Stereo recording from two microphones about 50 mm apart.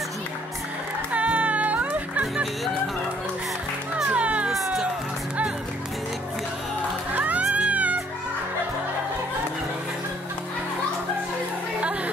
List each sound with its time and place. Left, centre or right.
1.1 s music: right
4.1 s music: right
4.5 s music: centre
7.2 s music: right